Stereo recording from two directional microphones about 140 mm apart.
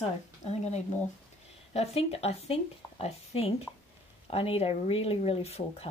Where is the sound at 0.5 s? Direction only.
50° left (ahead or behind).